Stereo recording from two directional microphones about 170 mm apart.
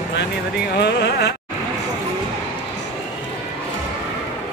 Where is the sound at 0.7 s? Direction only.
80° left.